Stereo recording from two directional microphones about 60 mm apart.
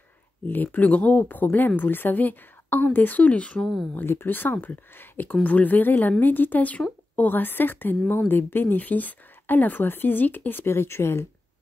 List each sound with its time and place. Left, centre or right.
0.5 s a woman's voice: left
3.9 s a woman's voice: left